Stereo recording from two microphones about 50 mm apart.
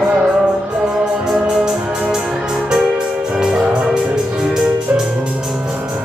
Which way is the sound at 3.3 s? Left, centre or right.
Centre.